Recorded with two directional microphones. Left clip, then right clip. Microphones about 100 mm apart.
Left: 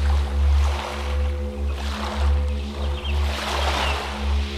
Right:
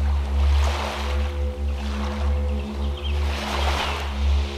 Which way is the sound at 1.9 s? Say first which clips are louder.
Left 3 dB; 25° left (ahead or behind).